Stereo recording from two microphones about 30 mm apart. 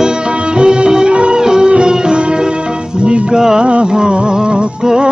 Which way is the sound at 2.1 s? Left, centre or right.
Right.